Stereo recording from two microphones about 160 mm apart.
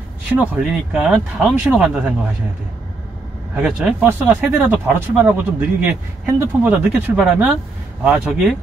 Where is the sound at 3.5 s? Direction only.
5° right (ahead or behind).